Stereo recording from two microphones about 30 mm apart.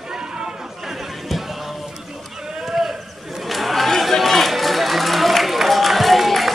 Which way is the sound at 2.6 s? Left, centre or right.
Centre.